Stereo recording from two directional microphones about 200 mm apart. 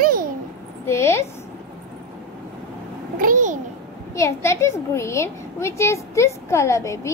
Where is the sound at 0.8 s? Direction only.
15° left (ahead or behind).